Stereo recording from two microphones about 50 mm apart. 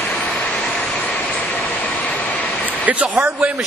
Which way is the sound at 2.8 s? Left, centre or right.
Right.